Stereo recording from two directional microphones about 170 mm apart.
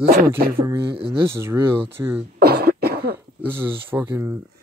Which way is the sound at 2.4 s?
65° right (ahead or behind).